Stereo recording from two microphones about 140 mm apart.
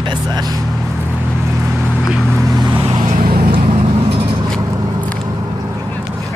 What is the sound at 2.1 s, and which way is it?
Vehicle, 5° left (ahead or behind).